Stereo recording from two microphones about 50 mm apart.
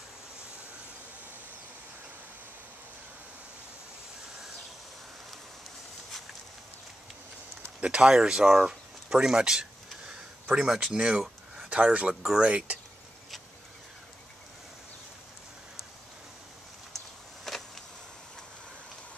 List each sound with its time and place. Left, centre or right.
7.8 s speech: centre
12.1 s speech: centre
12.4 s speech: right
17.5 s a sound: centre